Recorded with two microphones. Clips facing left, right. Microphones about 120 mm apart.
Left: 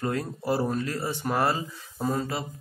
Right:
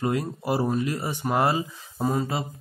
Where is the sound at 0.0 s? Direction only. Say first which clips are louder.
Right 3 dB; 15° right (ahead or behind).